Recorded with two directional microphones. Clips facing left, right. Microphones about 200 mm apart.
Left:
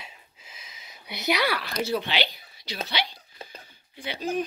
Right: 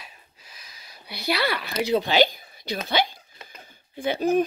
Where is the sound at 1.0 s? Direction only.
20° left (ahead or behind).